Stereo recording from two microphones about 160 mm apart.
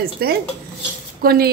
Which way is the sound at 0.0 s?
75° right (ahead or behind).